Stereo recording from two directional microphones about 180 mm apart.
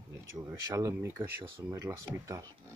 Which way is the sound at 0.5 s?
15° right (ahead or behind).